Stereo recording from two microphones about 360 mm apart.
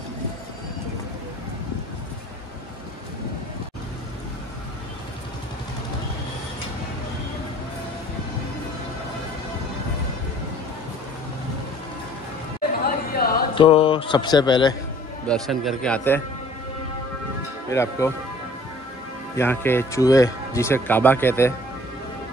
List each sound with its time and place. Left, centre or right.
12.8 s a sound: left
13.6 s speech: centre
15.2 s a man's voice: centre
17.6 s speech: centre
19.3 s speech: centre